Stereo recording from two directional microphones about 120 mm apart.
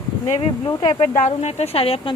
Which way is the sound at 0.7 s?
35° left (ahead or behind).